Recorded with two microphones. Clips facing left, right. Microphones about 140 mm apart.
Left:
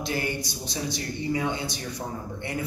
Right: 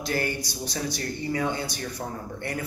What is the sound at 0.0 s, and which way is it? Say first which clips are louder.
A man's voice: right 1 dB; 20° left (ahead or behind).